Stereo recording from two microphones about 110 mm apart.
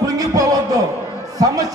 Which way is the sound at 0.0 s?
30° right (ahead or behind).